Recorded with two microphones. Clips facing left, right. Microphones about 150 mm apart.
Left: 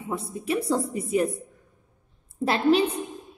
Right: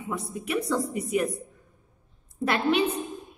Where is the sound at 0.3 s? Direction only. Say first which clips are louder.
Left 2 dB; 30° left (ahead or behind).